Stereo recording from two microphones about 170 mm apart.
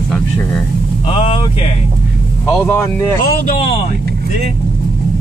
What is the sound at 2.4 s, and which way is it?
Speech, 15° left (ahead or behind).